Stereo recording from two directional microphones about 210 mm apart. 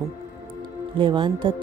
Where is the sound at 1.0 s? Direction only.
25° right (ahead or behind).